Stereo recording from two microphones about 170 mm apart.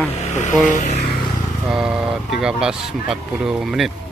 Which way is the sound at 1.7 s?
5° right (ahead or behind).